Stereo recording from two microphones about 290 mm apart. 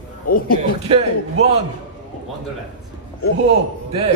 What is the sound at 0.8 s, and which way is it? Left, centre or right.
Speech, right.